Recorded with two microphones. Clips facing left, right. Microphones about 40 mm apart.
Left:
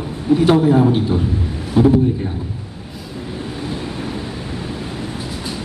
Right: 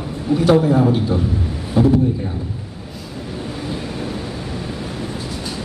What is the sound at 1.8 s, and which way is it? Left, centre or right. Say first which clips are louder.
Speech: left 2 dB; centre.